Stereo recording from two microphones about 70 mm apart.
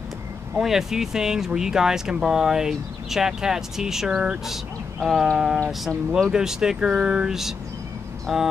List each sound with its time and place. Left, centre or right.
0.6 s speech: centre
5.0 s speech: centre